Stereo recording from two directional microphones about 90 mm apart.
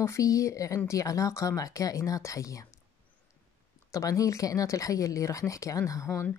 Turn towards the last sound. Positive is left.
turn(degrees=30)  # may be behind; listen again after turning